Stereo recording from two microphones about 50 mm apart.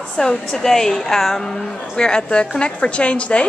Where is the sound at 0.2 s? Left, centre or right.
Centre.